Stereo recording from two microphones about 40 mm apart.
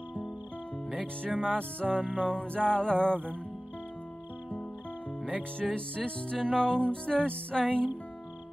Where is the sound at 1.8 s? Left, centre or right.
Centre.